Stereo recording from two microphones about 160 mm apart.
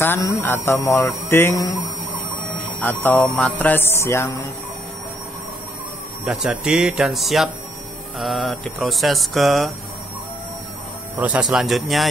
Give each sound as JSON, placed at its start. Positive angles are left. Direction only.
{"t": 0.0, "sound": "speech", "side_deg": 15}
{"t": 2.8, "sound": "speech", "side_deg": 10}
{"t": 6.2, "sound": "speech", "side_deg": -5}
{"t": 11.1, "sound": "speech", "side_deg": -10}